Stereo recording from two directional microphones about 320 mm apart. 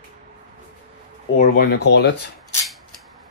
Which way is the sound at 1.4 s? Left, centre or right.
Left.